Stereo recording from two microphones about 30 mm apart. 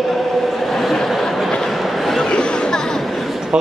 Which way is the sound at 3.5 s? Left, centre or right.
Right.